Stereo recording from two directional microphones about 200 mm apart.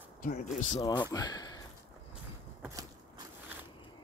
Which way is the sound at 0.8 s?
20° left (ahead or behind).